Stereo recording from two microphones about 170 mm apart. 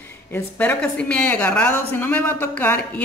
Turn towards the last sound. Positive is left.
turn(degrees=10)  # may be behind; listen again after turning